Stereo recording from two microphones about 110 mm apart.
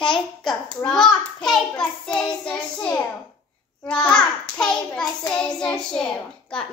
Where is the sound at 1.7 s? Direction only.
5° left (ahead or behind).